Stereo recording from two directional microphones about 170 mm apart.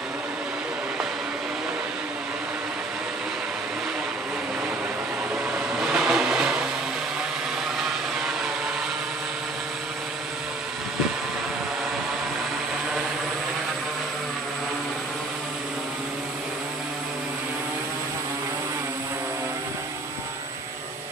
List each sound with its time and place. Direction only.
5.8 s vehicle: 5° right (ahead or behind)